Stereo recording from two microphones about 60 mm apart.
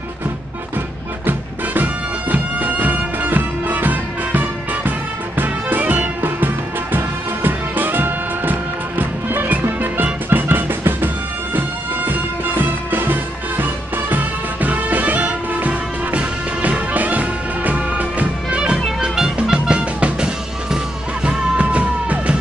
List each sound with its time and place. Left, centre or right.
1.2 s music: right
21.3 s music: right